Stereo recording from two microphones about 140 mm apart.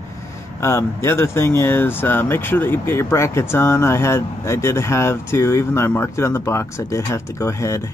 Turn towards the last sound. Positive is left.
turn(degrees=20)  # may be behind; listen again after turning